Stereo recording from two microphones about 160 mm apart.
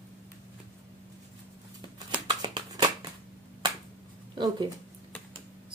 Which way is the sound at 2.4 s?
25° right (ahead or behind).